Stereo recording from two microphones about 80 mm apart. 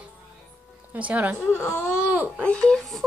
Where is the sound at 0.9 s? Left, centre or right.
Centre.